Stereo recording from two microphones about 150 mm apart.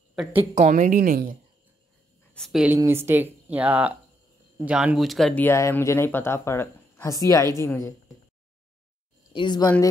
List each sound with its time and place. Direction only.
0.6 s a woman's voice: 55° right (ahead or behind)
2.3 s speech: centre (ahead or behind)
2.8 s speech: 15° right (ahead or behind); by 5.4 s centre (ahead or behind)
5.4 s a woman's voice: 20° left (ahead or behind)
9.3 s a woman's voice: 30° left (ahead or behind)